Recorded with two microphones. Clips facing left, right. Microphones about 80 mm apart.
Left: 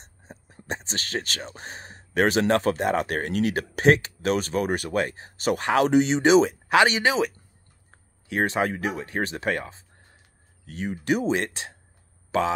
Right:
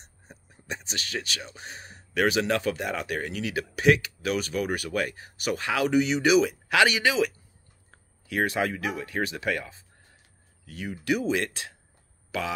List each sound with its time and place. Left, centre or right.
0.7 s speech: left
3.7 s speech: left